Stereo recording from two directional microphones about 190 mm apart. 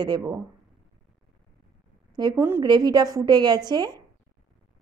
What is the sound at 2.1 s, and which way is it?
A woman's voice, 20° right (ahead or behind).